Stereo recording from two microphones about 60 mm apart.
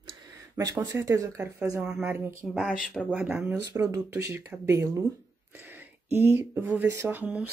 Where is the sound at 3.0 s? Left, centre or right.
Centre.